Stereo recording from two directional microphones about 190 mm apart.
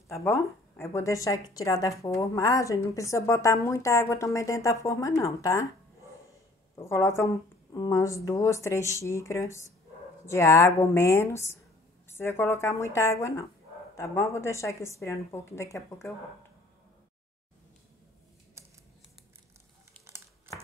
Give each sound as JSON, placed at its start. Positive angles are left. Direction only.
{"t": 0.1, "sound": "speech", "side_deg": 15}
{"t": 6.7, "sound": "a woman's voice", "side_deg": 15}